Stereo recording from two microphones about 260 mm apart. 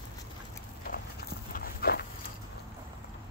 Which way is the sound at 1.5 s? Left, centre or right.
Left.